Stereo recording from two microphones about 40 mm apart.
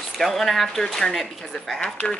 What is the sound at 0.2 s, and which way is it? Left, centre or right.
Speech, centre.